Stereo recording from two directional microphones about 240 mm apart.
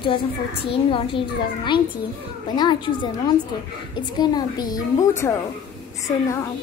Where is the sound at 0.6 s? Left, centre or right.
Left.